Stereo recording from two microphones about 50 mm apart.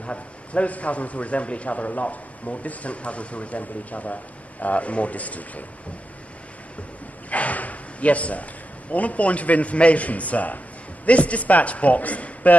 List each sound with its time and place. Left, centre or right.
0.0 s a man's voice: left
7.2 s snort: left
8.9 s a man's voice: left